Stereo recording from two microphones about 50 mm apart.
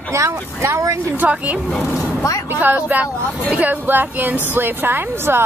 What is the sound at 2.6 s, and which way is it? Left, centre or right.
Speech, right.